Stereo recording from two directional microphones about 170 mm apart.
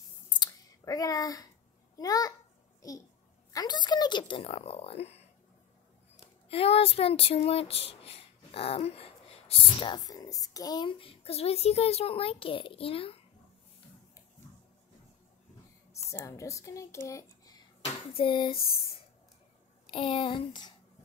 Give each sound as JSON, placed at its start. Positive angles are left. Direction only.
{"t": 0.4, "sound": "clicking", "side_deg": 20}
{"t": 2.0, "sound": "a sound", "side_deg": 20}
{"t": 3.5, "sound": "speech", "side_deg": 25}
{"t": 6.5, "sound": "speech", "side_deg": 35}
{"t": 16.1, "sound": "speech", "side_deg": 20}
{"t": 18.1, "sound": "speech", "side_deg": 30}
{"t": 19.9, "sound": "a sound", "side_deg": 30}